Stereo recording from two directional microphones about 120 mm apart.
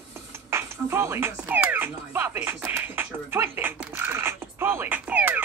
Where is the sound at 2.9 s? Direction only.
20° right (ahead or behind).